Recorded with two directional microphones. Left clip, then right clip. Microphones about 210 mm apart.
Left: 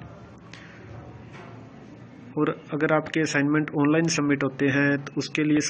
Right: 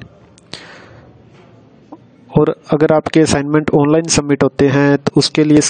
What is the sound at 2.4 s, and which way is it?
Speech, 65° right (ahead or behind).